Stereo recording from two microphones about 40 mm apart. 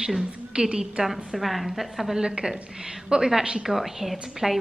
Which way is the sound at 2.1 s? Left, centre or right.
Centre.